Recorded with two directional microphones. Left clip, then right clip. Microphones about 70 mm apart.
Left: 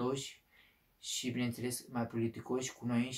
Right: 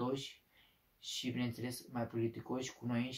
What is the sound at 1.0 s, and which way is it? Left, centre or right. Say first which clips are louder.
Speech: left 2 dB; left.